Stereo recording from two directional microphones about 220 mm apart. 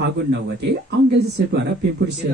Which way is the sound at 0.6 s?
50° right (ahead or behind).